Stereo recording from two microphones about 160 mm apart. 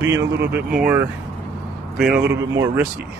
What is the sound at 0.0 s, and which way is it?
A man's voice, 15° right (ahead or behind).